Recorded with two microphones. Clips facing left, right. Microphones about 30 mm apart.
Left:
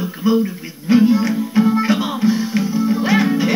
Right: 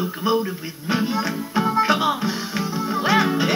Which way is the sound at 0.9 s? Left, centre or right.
Right.